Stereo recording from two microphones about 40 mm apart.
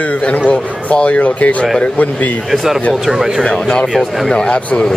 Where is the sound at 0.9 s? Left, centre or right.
Left.